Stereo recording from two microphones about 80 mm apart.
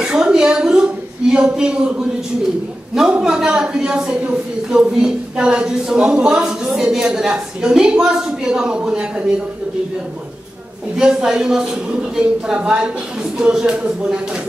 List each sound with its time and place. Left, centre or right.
0.0 s a sound: centre
1.3 s a woman's voice: centre
11.0 s a woman's voice: centre